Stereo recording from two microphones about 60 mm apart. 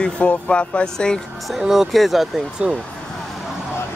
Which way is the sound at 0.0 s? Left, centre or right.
Centre.